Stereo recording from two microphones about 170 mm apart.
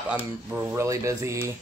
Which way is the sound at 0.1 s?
10° right (ahead or behind).